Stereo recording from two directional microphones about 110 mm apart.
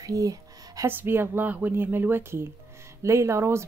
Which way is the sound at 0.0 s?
30° right (ahead or behind).